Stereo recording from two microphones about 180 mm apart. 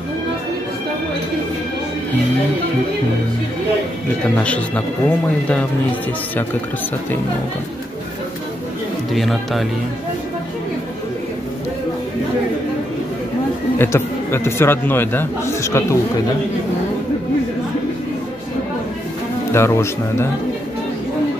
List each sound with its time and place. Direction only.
4.4 s a man's voice: 5° left (ahead or behind)
9.1 s speech: centre (ahead or behind)
13.7 s a man's voice: 15° left (ahead or behind)
19.5 s a man's voice: 15° left (ahead or behind)